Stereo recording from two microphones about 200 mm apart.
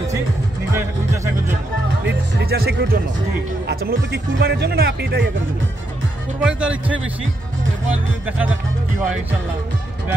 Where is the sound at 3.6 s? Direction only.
55° right (ahead or behind).